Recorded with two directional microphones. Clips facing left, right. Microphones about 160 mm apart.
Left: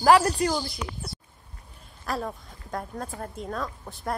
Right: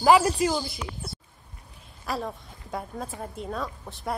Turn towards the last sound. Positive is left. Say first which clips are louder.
# even
turn(degrees=0)  # may be behind; listen again after turning